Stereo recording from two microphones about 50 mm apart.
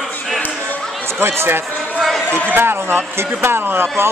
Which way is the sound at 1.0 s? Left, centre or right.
Right.